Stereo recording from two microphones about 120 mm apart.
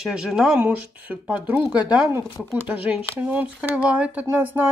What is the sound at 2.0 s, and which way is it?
A woman's voice, 20° right (ahead or behind).